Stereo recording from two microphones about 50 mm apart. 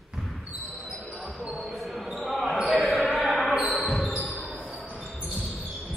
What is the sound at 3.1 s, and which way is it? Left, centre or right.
Basketball bounce, centre.